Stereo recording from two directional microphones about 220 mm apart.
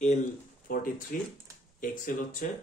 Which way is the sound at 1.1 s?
40° left (ahead or behind).